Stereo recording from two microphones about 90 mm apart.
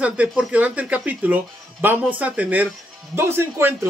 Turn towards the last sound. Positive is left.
turn(degrees=-25)  # may be behind; listen again after turning